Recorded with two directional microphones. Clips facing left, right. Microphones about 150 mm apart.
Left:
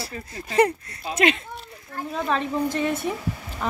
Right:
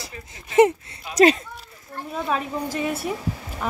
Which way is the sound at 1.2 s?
35° right (ahead or behind).